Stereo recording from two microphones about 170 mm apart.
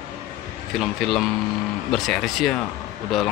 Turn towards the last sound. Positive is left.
turn(degrees=0)  # may be behind; listen again after turning